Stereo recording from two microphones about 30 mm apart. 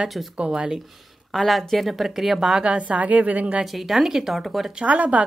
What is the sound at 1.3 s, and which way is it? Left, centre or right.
Speech, centre.